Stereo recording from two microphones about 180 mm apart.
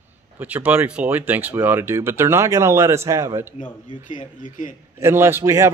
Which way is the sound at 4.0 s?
45° left (ahead or behind).